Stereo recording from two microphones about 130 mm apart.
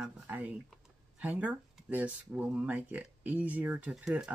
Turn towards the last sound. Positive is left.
turn(degrees=-5)  # may be behind; listen again after turning